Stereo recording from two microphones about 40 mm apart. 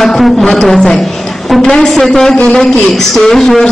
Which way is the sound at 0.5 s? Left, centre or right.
Centre.